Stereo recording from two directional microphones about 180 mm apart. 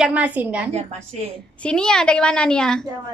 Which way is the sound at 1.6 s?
5° left (ahead or behind).